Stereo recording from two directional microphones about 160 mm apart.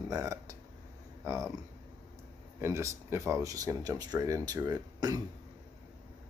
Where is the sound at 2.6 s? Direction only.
15° right (ahead or behind).